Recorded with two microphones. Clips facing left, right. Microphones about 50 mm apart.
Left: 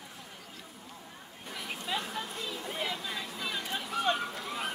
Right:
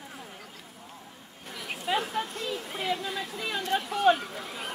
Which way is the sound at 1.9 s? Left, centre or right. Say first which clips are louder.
Right 7 dB; right.